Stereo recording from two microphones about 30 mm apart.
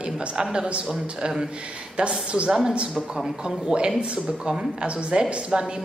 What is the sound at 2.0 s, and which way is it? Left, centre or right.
Speech, right.